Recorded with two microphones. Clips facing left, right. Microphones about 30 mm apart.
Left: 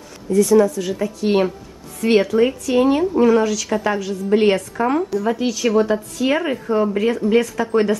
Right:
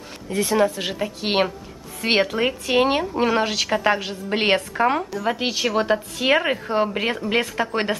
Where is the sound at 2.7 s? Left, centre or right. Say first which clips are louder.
Left 1 dB; right.